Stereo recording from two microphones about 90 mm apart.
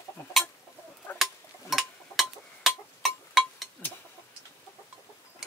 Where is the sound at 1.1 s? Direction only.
20° left (ahead or behind).